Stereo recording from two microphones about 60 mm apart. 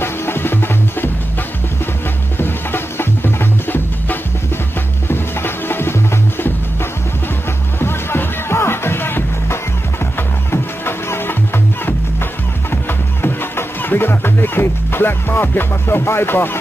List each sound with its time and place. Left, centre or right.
0.0 s music: left
2.3 s music: left